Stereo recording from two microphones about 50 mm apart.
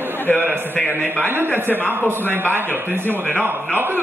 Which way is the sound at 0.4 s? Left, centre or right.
Right.